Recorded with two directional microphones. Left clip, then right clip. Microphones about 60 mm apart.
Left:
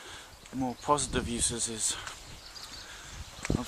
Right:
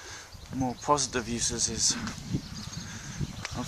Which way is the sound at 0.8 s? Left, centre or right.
Right.